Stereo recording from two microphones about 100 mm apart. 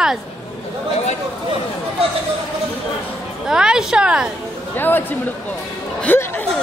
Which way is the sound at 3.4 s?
5° right (ahead or behind).